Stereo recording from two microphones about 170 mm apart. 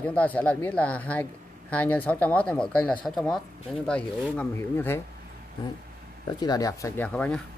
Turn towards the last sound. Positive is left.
turn(degrees=5)  # may be behind; listen again after turning